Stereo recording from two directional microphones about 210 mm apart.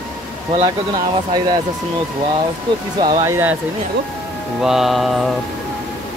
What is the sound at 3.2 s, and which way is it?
Speech, 10° right (ahead or behind).